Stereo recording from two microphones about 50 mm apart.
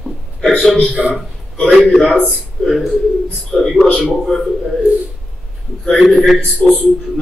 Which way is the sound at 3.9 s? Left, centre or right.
Centre.